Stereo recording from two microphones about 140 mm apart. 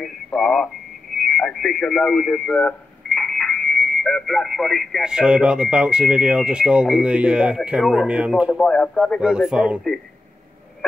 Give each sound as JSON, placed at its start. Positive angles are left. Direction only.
{"t": 0.0, "sound": "speech", "side_deg": 5}
{"t": 8.5, "sound": "speech", "side_deg": 5}